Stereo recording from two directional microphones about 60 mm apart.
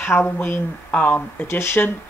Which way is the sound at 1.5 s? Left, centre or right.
Left.